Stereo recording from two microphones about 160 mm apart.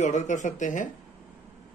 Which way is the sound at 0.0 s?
45° left (ahead or behind).